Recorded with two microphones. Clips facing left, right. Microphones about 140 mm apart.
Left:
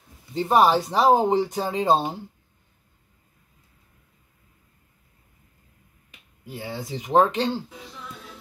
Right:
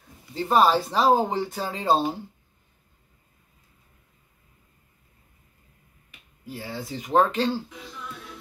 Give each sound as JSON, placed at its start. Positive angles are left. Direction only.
{"t": 0.3, "sound": "speech", "side_deg": 20}
{"t": 6.5, "sound": "speech", "side_deg": 20}